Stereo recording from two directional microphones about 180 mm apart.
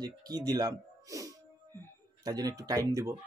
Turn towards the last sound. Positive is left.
turn(degrees=-20)  # may be behind; listen again after turning